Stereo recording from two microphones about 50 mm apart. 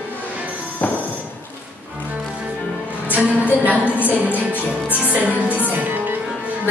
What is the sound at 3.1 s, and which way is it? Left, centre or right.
Music, right.